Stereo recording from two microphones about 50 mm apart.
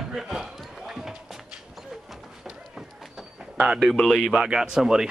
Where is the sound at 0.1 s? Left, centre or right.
Centre.